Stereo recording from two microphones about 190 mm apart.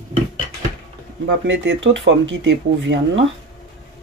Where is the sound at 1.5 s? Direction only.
75° right (ahead or behind).